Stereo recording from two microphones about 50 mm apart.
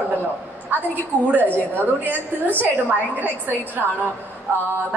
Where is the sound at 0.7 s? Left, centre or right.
Right.